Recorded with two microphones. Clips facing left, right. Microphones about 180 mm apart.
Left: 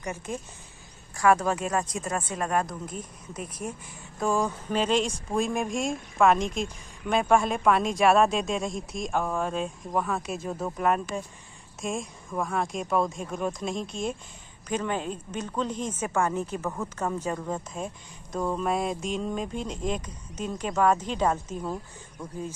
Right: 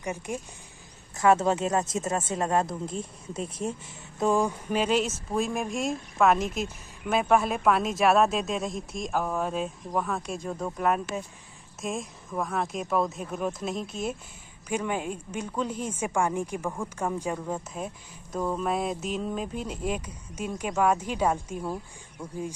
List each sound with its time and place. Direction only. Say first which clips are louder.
0.0 s speech: right 1 dB; 15° right (ahead or behind)